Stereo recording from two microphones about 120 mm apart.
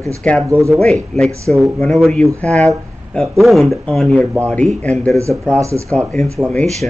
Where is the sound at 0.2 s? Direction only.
10° left (ahead or behind).